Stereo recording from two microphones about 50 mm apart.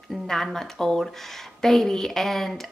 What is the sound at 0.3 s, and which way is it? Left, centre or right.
A woman's voice, centre.